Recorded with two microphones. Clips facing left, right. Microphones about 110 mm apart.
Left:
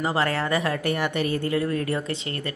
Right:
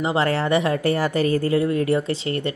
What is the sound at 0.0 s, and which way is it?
A woman's voice, 25° right (ahead or behind).